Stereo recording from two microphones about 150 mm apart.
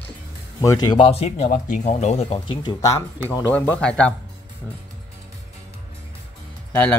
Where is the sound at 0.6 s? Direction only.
25° left (ahead or behind); by 2.3 s 45° left (ahead or behind).